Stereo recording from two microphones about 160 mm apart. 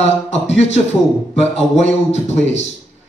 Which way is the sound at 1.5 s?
40° left (ahead or behind).